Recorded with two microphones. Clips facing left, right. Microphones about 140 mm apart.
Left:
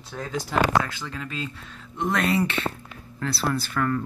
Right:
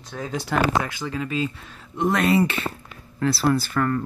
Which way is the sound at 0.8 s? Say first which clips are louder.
Right 5 dB; 10° right (ahead or behind).